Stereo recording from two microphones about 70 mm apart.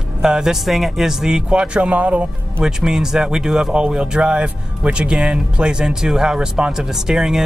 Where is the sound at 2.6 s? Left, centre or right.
Centre.